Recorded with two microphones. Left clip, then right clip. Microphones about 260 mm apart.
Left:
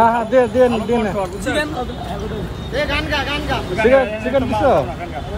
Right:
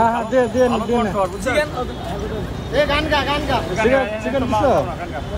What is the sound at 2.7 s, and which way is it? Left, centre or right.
Speech, right.